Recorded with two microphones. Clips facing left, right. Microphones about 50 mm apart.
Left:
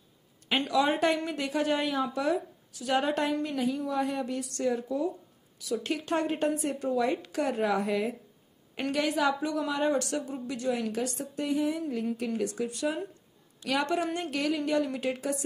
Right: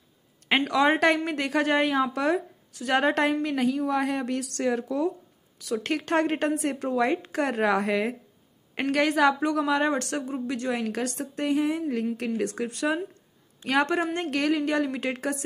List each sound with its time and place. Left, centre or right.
0.7 s a woman's voice: right
5.6 s a woman's voice: right